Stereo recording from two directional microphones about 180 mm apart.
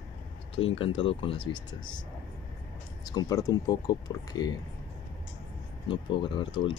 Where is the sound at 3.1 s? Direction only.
20° left (ahead or behind).